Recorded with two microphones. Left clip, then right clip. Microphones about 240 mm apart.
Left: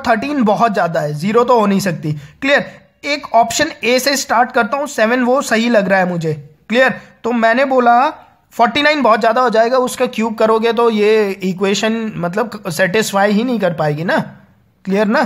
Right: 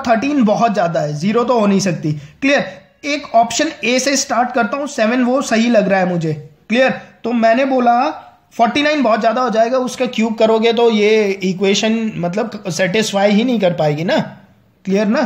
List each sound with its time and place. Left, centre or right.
0.0 s speech: left